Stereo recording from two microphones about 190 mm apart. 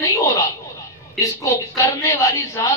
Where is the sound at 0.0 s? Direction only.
15° left (ahead or behind).